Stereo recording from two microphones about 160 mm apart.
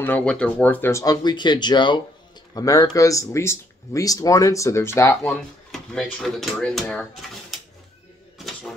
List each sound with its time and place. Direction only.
0.0 s speech: 10° left (ahead or behind)
5.7 s speech: 5° left (ahead or behind)